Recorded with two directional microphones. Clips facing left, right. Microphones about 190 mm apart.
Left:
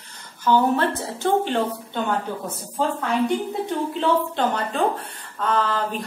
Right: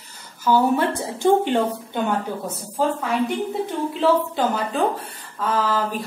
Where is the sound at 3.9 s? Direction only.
5° right (ahead or behind).